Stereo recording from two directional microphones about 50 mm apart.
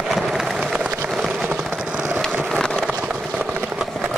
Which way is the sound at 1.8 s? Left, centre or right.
Centre.